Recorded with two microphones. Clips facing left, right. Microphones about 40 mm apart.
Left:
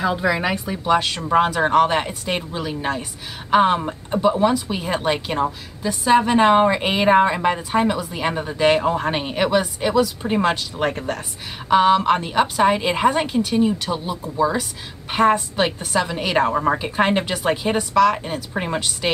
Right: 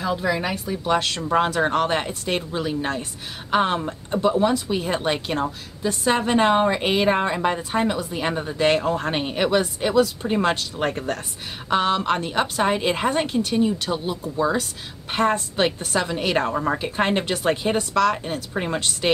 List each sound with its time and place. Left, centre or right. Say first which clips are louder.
0.1 s speech: left 3 dB; left
0.8 s speech: left 3 dB; centre
9.1 s a woman's voice: left 2 dB; centre
14.6 s a woman's voice: left 1 dB; centre
16.4 s speech: left 4 dB; centre